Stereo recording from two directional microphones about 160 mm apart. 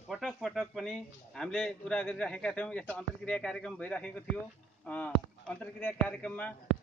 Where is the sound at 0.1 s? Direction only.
Centre (ahead or behind).